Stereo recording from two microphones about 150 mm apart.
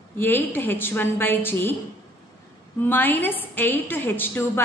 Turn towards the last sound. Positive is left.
turn(degrees=15)  # may be behind; listen again after turning